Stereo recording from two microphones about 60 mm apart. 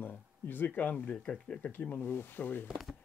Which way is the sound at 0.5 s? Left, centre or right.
Left.